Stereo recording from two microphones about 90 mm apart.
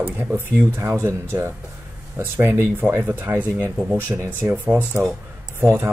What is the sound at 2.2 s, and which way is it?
Speech, 25° right (ahead or behind).